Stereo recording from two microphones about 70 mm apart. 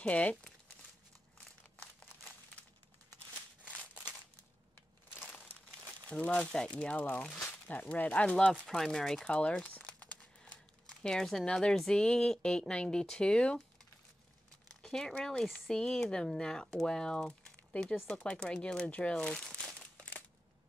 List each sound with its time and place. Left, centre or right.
0.0 s speech: centre
6.0 s speech: centre
14.8 s speech: centre
18.9 s speech: centre
19.6 s crumpling: centre